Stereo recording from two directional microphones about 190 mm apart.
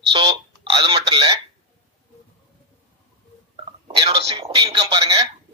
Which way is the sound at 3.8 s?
25° right (ahead or behind).